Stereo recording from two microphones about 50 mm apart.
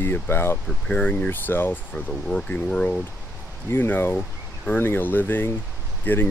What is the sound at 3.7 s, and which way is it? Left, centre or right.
Speech, left.